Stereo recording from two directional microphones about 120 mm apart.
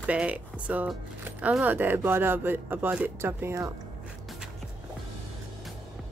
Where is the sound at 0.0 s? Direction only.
10° right (ahead or behind).